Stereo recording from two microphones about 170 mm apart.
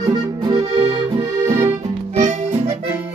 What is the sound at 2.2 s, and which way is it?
Music, 45° right (ahead or behind).